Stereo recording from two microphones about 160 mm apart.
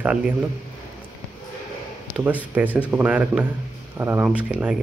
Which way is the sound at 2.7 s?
10° right (ahead or behind).